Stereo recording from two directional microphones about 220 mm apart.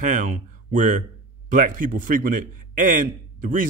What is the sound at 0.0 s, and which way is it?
A man's voice, 35° right (ahead or behind).